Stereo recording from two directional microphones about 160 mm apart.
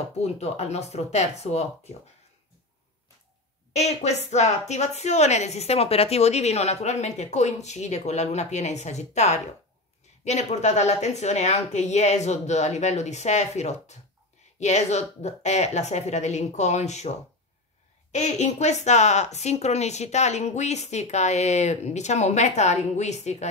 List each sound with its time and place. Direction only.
0.2 s speech: 45° left (ahead or behind)
3.7 s speech: 45° left (ahead or behind)
18.1 s speech: 45° left (ahead or behind)